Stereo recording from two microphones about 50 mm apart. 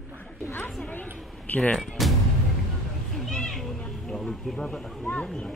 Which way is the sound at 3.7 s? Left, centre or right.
Centre.